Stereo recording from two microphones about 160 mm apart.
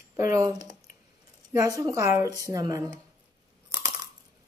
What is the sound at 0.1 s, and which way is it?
Speech, 20° right (ahead or behind).